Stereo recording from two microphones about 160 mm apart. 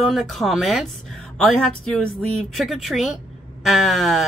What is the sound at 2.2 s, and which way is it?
Speech, 40° right (ahead or behind).